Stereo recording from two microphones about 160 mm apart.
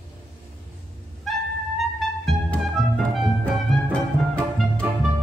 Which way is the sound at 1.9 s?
Centre (ahead or behind).